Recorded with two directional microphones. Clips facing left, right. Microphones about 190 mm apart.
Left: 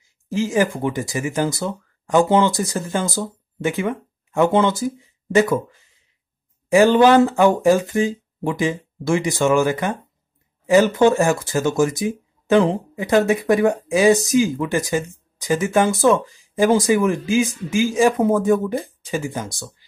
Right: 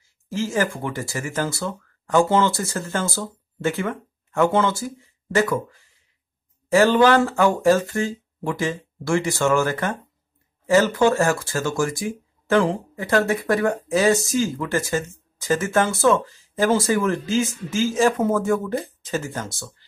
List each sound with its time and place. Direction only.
0.0 s speech: 15° left (ahead or behind)
6.7 s speech: 15° left (ahead or behind)